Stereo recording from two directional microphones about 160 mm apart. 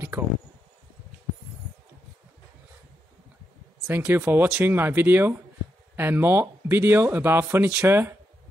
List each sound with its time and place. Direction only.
3.8 s speech: 15° right (ahead or behind)